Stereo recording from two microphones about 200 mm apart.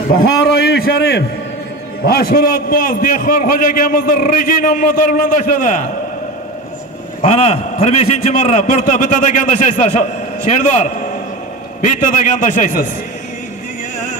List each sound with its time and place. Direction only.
0.2 s a man's voice: 55° left (ahead or behind)
7.2 s a man's voice: 30° left (ahead or behind)